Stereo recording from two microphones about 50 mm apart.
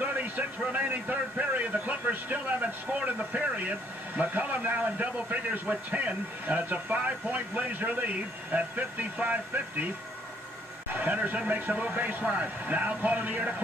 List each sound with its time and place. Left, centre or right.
0.0 s music: right
0.7 s a man's voice: right
10.9 s a man's voice: right